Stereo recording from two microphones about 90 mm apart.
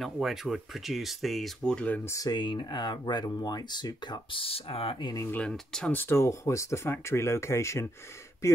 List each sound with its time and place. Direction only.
0.0 s speech: centre (ahead or behind)
1.7 s speech: 10° left (ahead or behind)
2.0 s speech: 40° left (ahead or behind)
2.3 s speech: 55° left (ahead or behind)
4.4 s speech: 90° left
5.3 s speech: 10° left (ahead or behind)
5.9 s speech: 25° left (ahead or behind)